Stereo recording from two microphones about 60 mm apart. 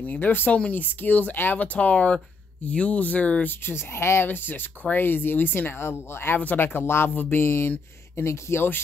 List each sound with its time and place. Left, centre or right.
0.0 s speech: left
3.9 s speech: left